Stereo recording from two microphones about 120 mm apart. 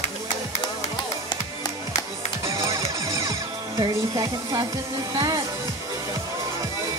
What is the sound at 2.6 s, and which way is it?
Music, 30° right (ahead or behind).